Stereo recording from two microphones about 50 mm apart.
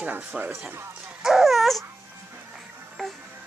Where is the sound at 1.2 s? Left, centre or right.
Centre.